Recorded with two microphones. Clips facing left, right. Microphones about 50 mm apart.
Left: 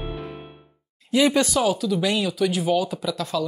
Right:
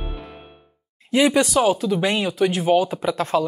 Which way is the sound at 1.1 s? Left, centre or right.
Right.